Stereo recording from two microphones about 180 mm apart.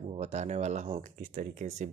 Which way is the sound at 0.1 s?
35° right (ahead or behind).